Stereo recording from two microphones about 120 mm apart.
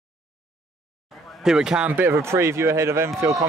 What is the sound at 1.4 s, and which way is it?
Speech, 5° right (ahead or behind).